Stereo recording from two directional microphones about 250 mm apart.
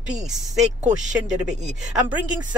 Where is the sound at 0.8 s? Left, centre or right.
Right.